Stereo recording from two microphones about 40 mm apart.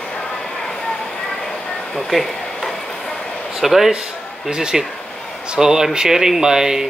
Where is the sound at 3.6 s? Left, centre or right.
Centre.